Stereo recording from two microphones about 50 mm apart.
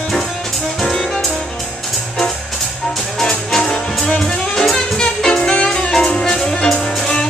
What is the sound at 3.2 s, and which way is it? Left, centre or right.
Music, centre.